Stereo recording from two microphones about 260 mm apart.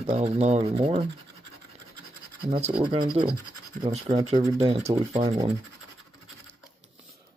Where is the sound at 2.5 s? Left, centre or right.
Right.